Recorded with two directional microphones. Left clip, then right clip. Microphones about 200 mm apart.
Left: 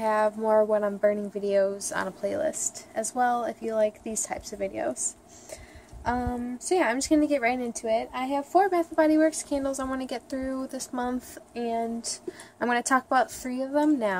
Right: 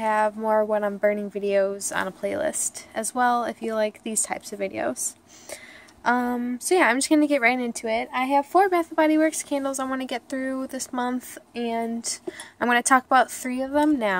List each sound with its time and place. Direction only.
0.0 s a woman's voice: 10° right (ahead or behind); by 4.9 s 25° right (ahead or behind)
6.0 s a woman's voice: 30° right (ahead or behind); by 14.1 s 15° right (ahead or behind)